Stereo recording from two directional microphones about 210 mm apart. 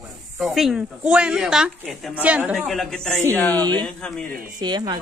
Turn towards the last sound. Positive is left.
turn(degrees=-20)  # may be behind; listen again after turning